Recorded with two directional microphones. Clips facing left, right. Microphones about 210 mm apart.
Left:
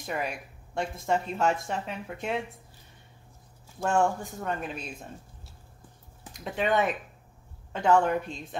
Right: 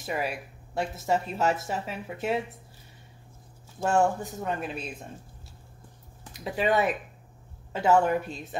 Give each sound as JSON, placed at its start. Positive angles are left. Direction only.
{"t": 0.0, "sound": "speech", "side_deg": -5}
{"t": 3.8, "sound": "a woman's voice", "side_deg": -5}
{"t": 6.3, "sound": "a woman's voice", "side_deg": -5}